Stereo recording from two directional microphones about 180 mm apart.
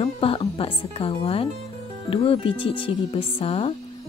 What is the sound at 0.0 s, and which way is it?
Speech, 30° left (ahead or behind).